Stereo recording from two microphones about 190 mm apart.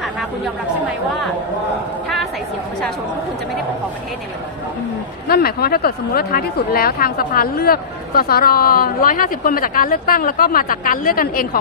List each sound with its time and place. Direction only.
5.3 s a woman's voice: 55° left (ahead or behind)